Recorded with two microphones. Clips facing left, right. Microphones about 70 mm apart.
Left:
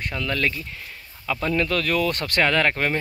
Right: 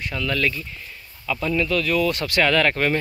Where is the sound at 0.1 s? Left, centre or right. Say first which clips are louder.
Right 2 dB; left.